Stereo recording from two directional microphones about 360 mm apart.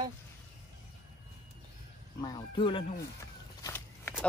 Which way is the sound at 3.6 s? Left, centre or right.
Centre.